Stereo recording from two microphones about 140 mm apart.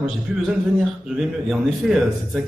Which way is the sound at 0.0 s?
Centre (ahead or behind).